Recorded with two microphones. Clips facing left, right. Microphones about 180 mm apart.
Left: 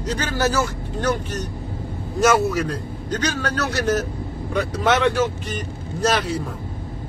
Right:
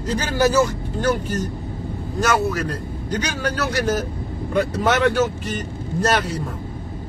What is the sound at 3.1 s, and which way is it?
Speech, 10° right (ahead or behind).